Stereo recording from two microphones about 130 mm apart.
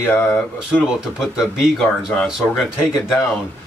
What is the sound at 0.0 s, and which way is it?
Speech, 15° left (ahead or behind).